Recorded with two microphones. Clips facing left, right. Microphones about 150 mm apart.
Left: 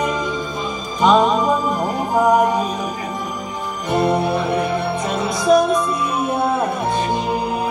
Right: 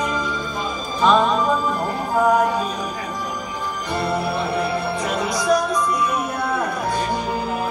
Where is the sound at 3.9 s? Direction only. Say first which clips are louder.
Left 6 dB; 20° left (ahead or behind).